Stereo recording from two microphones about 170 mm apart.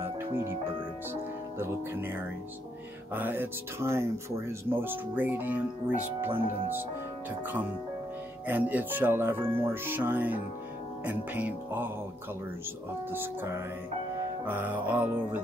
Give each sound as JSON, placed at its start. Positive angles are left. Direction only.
{"t": 0.0, "sound": "music", "side_deg": -15}
{"t": 1.6, "sound": "speech", "side_deg": -10}
{"t": 9.4, "sound": "speech", "side_deg": -35}
{"t": 9.8, "sound": "speech", "side_deg": -10}
{"t": 13.1, "sound": "speech", "side_deg": -10}